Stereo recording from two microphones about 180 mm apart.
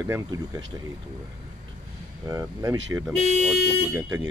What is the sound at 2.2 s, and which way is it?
Speech, 20° right (ahead or behind).